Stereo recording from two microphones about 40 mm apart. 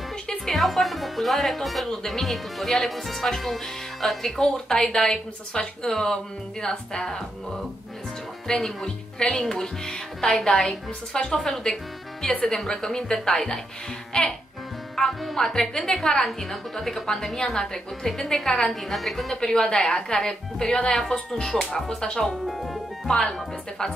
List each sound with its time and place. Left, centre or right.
0.5 s speech: centre
4.4 s a woman's voice: centre
8.5 s a woman's voice: centre
11.2 s a woman's voice: centre
15.0 s a woman's voice: centre
19.4 s a woman's voice: centre
22.5 s music: centre
23.0 s speech: centre